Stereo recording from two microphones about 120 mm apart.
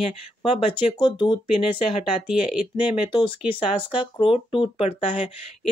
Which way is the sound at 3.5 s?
45° left (ahead or behind).